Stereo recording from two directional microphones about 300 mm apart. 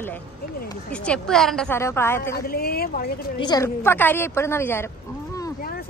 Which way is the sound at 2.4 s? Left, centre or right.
Left.